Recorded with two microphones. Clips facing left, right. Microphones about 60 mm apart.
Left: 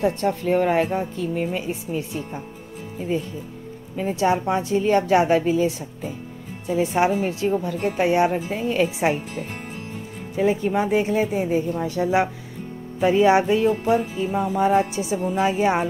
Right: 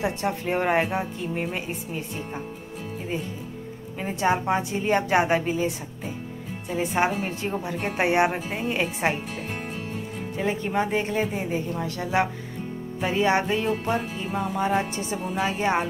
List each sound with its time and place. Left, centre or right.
0.0 s speech: centre
0.6 s music: centre
1.7 s speech: centre
4.1 s speech: centre
4.7 s speech: right
5.0 s music: centre
6.7 s speech: centre
7.4 s music: centre
7.8 s speech: right
8.5 s music: centre
10.3 s speech: centre
11.8 s speech: centre
13.1 s speech: centre
14.4 s speech: centre